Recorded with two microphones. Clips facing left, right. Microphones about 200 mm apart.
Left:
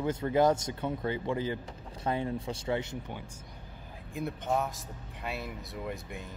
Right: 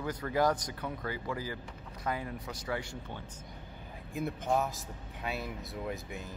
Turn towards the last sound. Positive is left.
turn(degrees=0)  # may be behind; listen again after turning